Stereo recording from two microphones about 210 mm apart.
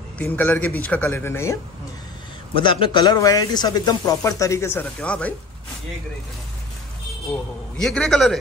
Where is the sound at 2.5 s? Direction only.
25° left (ahead or behind); by 5.3 s 5° left (ahead or behind).